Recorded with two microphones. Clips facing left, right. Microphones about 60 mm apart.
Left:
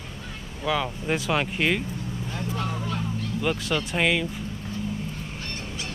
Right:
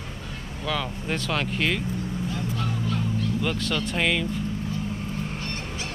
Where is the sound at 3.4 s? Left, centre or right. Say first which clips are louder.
Left 1 dB; centre.